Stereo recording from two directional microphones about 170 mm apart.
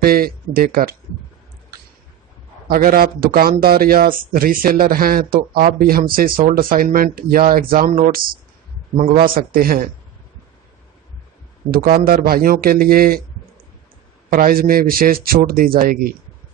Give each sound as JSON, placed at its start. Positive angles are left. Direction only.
{"t": 0.0, "sound": "speech", "side_deg": -60}
{"t": 2.7, "sound": "speech", "side_deg": -60}
{"t": 11.7, "sound": "speech", "side_deg": -60}
{"t": 14.3, "sound": "speech", "side_deg": -60}